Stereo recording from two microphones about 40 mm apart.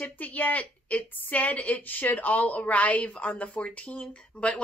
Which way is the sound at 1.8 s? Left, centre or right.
Left.